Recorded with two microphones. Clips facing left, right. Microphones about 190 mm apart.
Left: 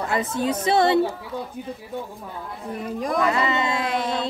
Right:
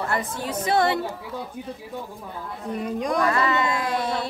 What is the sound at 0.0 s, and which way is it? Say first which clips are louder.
Speech: left 4 dB; 20° left (ahead or behind).